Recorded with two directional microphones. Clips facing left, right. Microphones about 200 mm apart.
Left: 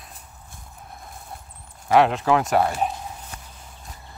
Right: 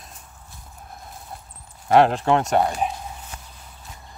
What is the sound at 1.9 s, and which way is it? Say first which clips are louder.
Speech: right 1 dB; centre (ahead or behind).